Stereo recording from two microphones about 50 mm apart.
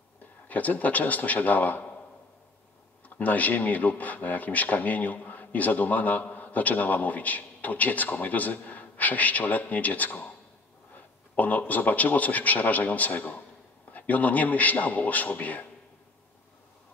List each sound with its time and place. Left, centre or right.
0.5 s speech: left
3.2 s speech: left